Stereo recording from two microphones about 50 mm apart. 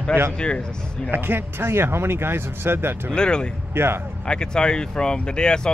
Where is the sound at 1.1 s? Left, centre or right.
Right.